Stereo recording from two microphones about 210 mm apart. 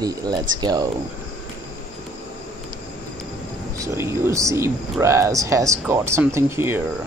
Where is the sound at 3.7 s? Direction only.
15° right (ahead or behind).